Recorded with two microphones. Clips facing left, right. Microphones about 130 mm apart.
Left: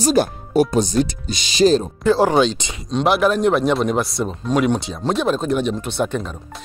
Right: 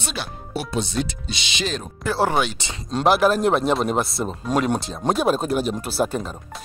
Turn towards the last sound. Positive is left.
turn(degrees=-5)  # may be behind; listen again after turning